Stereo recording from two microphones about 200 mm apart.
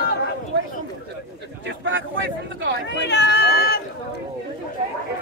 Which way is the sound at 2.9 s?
60° left (ahead or behind).